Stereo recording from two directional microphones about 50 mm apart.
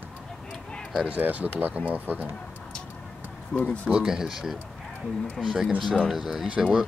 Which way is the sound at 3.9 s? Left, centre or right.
Centre.